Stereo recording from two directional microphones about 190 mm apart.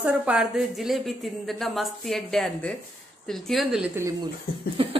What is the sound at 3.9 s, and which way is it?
Speech, 15° right (ahead or behind).